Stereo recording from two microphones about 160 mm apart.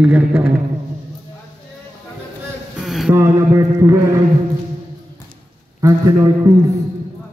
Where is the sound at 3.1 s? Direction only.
20° right (ahead or behind).